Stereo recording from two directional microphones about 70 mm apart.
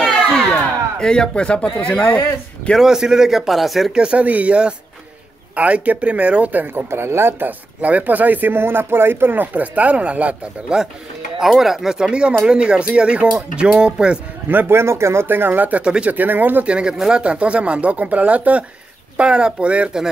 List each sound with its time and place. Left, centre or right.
0.9 s speech: centre
2.8 s a man's voice: centre
3.9 s speech: centre
11.3 s speech: centre
14.5 s speech: right
15.2 s speech: right
17.0 s speech: centre